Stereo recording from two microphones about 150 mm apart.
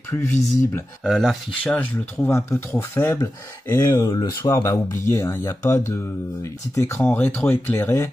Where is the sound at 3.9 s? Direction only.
30° left (ahead or behind).